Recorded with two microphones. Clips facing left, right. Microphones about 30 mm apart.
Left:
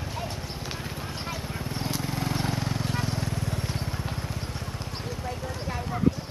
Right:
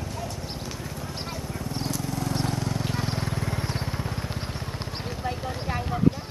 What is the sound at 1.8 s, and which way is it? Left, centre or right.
Vehicle, left.